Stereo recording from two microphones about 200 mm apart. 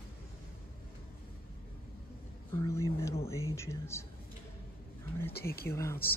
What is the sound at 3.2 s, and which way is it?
Speech, 15° left (ahead or behind).